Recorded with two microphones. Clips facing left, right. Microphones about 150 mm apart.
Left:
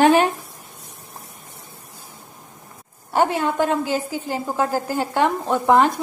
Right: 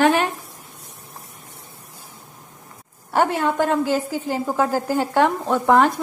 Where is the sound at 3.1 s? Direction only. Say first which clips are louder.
Even; 10° left (ahead or behind).